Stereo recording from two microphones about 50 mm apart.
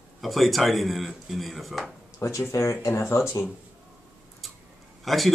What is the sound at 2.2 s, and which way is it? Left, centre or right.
Speech, left.